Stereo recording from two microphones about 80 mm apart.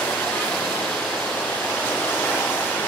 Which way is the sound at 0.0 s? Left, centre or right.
Centre.